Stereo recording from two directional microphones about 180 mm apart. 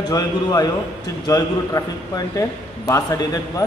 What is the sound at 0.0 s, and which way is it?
A man's voice, 20° left (ahead or behind).